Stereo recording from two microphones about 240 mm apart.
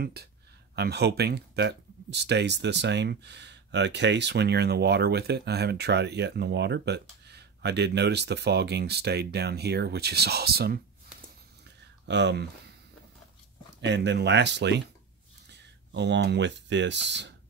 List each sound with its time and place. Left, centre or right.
0.0 s speech: right
13.7 s speech: right